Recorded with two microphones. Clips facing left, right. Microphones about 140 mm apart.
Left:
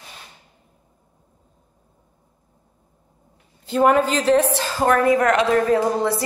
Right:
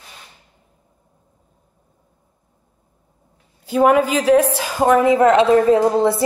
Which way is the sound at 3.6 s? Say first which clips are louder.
Right 2 dB; 10° right (ahead or behind).